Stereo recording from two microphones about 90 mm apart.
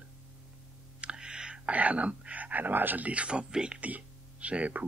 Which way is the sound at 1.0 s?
10° right (ahead or behind).